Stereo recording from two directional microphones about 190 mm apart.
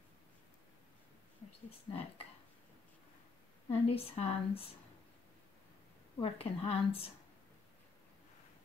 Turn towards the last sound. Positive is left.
turn(degrees=30)  # may be behind; listen again after turning